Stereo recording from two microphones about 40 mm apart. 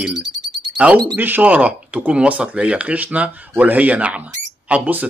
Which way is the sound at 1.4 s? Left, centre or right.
Right.